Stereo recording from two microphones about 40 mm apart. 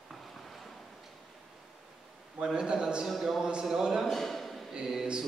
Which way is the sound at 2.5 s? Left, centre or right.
Right.